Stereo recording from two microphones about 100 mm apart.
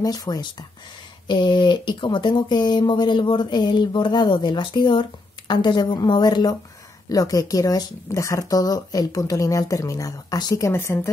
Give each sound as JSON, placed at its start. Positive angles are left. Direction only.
{"t": 0.0, "sound": "a woman's voice", "side_deg": 40}